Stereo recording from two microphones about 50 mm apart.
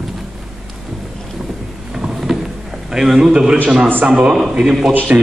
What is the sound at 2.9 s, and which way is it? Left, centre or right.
Speech, centre.